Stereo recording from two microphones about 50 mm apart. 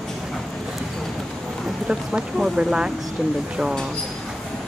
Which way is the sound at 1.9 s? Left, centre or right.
Centre.